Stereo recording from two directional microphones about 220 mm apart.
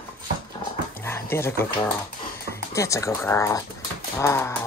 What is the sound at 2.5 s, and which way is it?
Speech, 15° left (ahead or behind).